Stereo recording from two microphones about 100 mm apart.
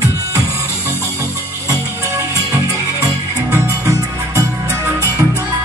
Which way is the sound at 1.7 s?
35° right (ahead or behind).